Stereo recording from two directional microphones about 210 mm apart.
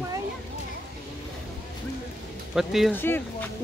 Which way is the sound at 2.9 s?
10° left (ahead or behind).